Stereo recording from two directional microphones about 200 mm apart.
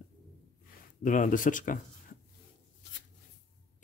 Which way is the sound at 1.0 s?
40° left (ahead or behind).